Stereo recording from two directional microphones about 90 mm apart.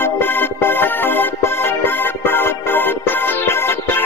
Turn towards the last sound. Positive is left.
turn(degrees=25)  # may be behind; listen again after turning